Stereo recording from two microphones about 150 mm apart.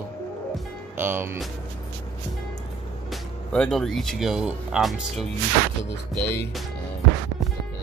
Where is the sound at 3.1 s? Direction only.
5° left (ahead or behind).